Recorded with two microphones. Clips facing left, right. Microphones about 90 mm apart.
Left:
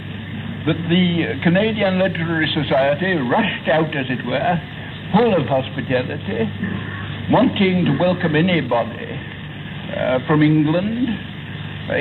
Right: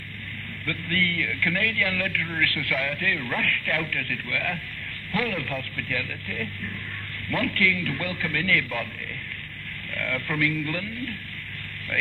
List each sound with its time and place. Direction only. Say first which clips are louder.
0.7 s a man's voice: left 10 dB; 45° left (ahead or behind)
9.9 s a man's voice: left 13 dB; 40° left (ahead or behind)